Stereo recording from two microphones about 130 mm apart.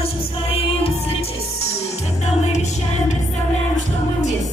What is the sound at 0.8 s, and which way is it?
Music, 45° left (ahead or behind).